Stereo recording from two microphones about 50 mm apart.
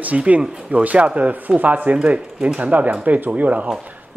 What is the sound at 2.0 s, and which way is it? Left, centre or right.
A man's voice, centre.